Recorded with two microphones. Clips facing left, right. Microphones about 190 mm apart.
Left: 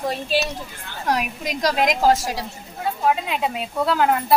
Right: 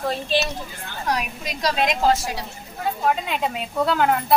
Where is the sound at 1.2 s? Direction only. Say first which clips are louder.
Left 3 dB; 45° left (ahead or behind).